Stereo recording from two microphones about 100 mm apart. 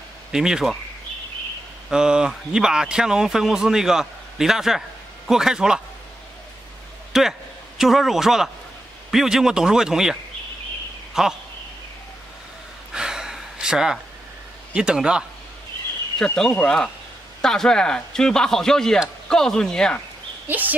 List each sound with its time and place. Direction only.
0.3 s speech: 5° right (ahead or behind)
1.9 s speech: 10° right (ahead or behind)
7.1 s a man's voice: 5° right (ahead or behind)
11.2 s speech: 5° right (ahead or behind)
12.9 s gasp: 5° right (ahead or behind)
14.7 s speech: 10° right (ahead or behind)
16.3 s a man's voice: 10° left (ahead or behind)
20.4 s speech: 15° right (ahead or behind)